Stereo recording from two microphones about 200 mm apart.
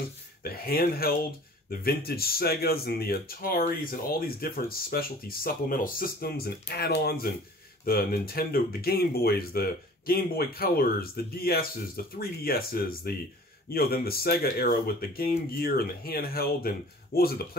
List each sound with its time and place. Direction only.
0.4 s speech: 50° left (ahead or behind)